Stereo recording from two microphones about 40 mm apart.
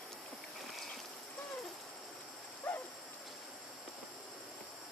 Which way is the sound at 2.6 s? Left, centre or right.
Left.